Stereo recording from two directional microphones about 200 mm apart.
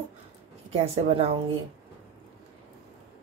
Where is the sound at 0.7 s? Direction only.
30° right (ahead or behind).